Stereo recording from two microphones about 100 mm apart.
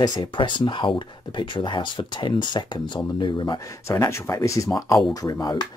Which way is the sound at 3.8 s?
30° left (ahead or behind).